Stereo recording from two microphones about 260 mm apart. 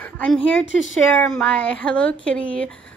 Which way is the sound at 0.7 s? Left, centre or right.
Left.